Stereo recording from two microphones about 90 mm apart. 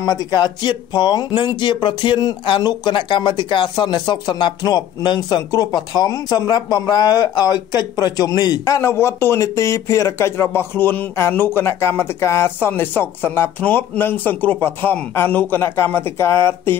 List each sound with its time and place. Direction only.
0.0 s speech: 45° left (ahead or behind); by 16.7 s 30° left (ahead or behind)